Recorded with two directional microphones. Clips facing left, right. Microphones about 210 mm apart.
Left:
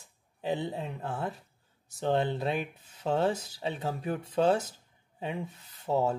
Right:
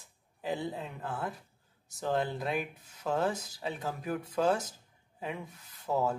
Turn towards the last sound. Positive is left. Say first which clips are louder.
# left 3 dB
turn(degrees=25)  # may be behind; listen again after turning